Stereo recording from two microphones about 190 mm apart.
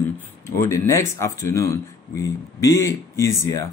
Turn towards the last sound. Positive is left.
turn(degrees=15)  # may be behind; listen again after turning